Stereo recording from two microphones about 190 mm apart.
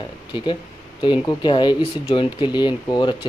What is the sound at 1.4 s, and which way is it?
Speech, 25° left (ahead or behind).